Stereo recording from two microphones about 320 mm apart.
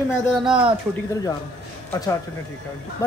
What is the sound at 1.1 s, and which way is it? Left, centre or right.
Speech, centre.